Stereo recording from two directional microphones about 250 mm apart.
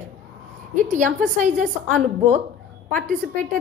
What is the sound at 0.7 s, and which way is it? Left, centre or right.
Speech, right.